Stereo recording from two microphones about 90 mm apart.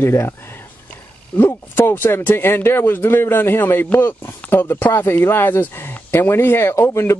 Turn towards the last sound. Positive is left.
turn(degrees=30)  # may be behind; listen again after turning